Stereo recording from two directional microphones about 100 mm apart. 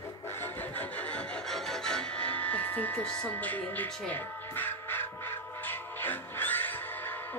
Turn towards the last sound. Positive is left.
turn(degrees=20)  # may be behind; listen again after turning